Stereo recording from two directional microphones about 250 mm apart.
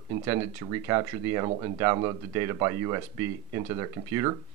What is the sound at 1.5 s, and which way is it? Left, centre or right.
Speech, right.